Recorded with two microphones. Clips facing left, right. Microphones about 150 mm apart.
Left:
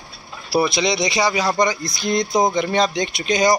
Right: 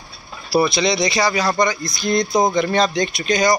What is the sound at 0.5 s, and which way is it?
A man's voice, 15° left (ahead or behind).